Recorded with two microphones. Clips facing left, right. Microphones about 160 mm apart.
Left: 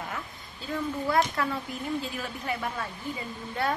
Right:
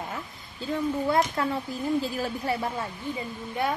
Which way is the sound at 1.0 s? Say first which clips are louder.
Left 1 dB; 25° right (ahead or behind).